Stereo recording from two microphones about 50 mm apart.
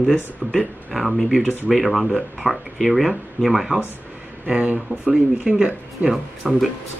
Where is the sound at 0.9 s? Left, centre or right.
Centre.